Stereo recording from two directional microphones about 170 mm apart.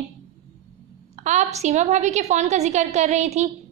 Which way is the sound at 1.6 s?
40° right (ahead or behind).